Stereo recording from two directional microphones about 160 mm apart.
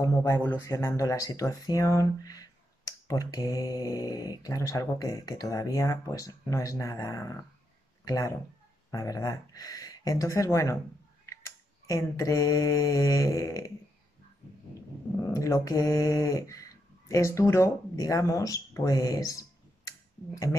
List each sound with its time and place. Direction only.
0.0 s speech: 20° left (ahead or behind)
11.2 s mantra: 20° left (ahead or behind)
15.2 s speech: 20° left (ahead or behind)